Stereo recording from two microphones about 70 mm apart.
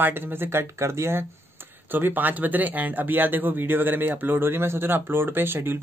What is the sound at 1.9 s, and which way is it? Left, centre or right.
Speech, right.